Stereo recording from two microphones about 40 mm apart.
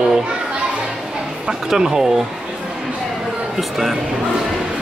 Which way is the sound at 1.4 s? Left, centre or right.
Centre.